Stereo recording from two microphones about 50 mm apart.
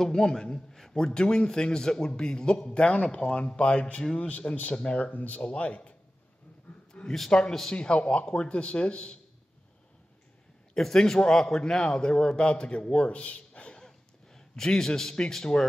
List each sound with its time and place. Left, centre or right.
0.0 s a man's voice: centre
4.2 s a man's voice: left
5.0 s speech: left
6.9 s a sound: centre
7.2 s a man's voice: centre
10.7 s a man's voice: centre
12.9 s a sound: left
14.6 s a man's voice: centre